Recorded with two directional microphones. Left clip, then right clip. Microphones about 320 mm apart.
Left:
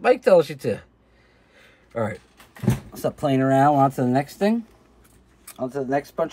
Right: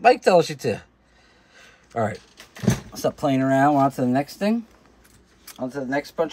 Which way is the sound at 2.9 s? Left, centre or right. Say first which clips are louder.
Even; centre.